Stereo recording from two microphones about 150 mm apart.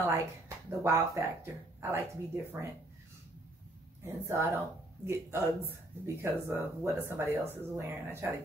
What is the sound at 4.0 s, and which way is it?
A woman's voice, 20° right (ahead or behind).